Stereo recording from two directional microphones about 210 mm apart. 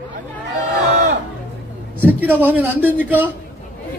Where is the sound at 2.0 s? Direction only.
10° right (ahead or behind).